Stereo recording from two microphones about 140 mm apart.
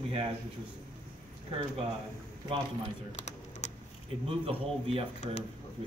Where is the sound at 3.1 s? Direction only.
55° left (ahead or behind).